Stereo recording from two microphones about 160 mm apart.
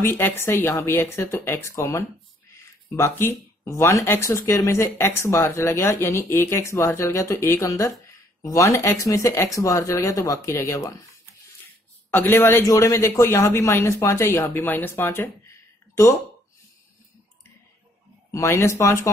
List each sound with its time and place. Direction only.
0.0 s speech: 15° left (ahead or behind)
18.3 s speech: 20° left (ahead or behind)